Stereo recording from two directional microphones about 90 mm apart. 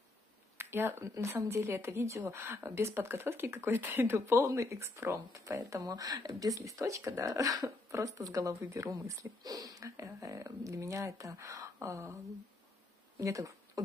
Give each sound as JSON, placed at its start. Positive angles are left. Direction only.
{"t": 0.6, "sound": "speech", "side_deg": -25}
{"t": 13.2, "sound": "speech", "side_deg": -35}